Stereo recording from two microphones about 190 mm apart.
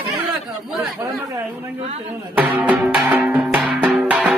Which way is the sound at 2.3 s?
10° right (ahead or behind).